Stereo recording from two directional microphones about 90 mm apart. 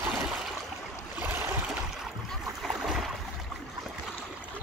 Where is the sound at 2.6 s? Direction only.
5° right (ahead or behind).